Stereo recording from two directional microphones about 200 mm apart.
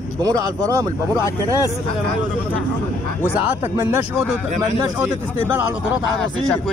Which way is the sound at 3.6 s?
10° right (ahead or behind).